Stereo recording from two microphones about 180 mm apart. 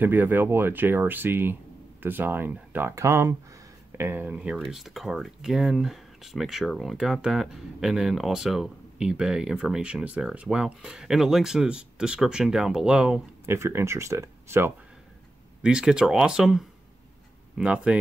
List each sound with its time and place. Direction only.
0.0 s speech: 10° right (ahead or behind)